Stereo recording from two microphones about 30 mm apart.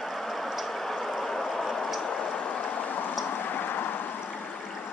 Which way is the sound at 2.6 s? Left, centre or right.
Left.